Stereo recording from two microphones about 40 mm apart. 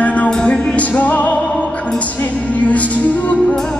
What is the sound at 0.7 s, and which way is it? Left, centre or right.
Music, left.